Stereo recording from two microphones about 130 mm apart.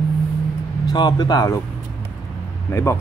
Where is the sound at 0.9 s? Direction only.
35° left (ahead or behind).